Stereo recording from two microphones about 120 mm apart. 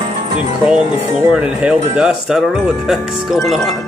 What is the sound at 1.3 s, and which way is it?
Speech, 10° right (ahead or behind).